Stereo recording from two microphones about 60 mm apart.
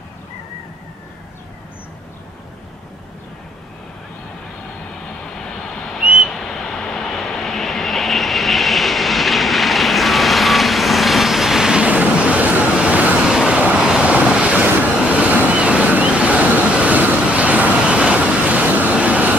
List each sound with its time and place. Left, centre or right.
6.2 s vehicle: centre; by 13.3 s right
13.3 s vehicle: centre
14.2 s waves: centre